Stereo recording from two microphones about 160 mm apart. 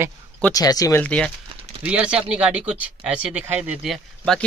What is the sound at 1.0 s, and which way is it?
Speech, 5° left (ahead or behind).